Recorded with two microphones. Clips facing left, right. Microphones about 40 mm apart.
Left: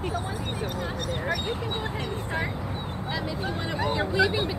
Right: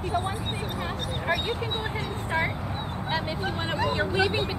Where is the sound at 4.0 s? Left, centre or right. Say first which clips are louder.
Left 3 dB; right.